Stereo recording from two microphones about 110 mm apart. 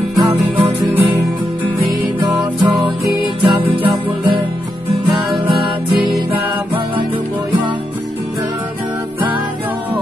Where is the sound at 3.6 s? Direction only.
50° right (ahead or behind).